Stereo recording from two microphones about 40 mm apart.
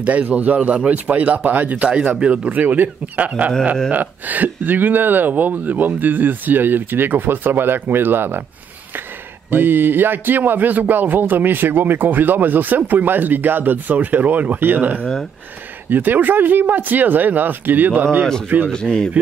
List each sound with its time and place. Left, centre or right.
0.0 s speech: right
2.1 s speech: right
2.6 s speech: right
9.5 s speech: right